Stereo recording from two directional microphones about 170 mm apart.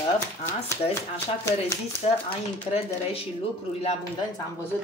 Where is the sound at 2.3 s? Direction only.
35° left (ahead or behind).